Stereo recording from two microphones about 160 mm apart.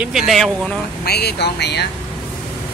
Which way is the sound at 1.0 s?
90° left.